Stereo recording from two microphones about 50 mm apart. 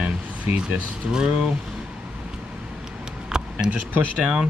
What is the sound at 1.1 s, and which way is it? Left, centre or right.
Speech, centre.